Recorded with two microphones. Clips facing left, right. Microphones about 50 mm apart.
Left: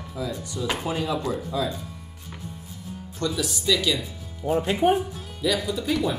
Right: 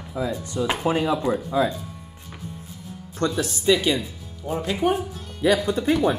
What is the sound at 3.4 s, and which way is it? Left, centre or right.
Speech, right.